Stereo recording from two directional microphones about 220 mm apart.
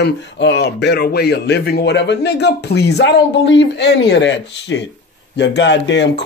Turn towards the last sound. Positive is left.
turn(degrees=55)  # may be behind; listen again after turning